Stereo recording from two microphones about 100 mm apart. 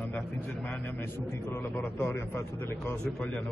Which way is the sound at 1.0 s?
25° left (ahead or behind).